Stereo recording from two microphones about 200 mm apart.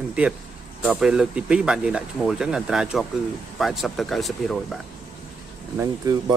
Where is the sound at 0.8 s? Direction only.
5° right (ahead or behind).